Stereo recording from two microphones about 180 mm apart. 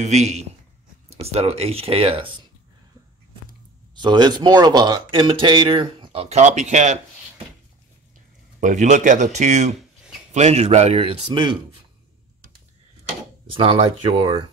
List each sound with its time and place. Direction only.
0.0 s speech: 40° right (ahead or behind)
3.9 s speech: 25° right (ahead or behind); by 7.0 s 40° right (ahead or behind)
8.5 s speech: 45° right (ahead or behind); by 11.5 s 25° right (ahead or behind)
13.5 s speech: 30° right (ahead or behind)